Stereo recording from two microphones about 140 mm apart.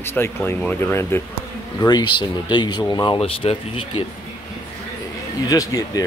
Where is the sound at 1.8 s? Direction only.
30° left (ahead or behind).